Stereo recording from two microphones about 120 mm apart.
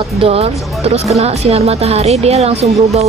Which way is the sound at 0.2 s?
55° right (ahead or behind).